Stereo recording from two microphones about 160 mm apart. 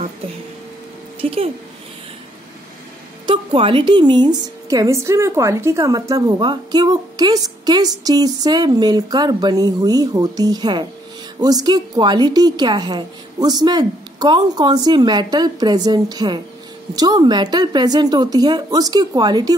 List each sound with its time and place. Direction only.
1.2 s a woman's voice: 35° right (ahead or behind)
3.3 s a woman's voice: 35° right (ahead or behind)